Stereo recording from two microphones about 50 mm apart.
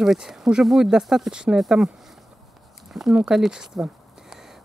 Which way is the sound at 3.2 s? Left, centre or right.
Centre.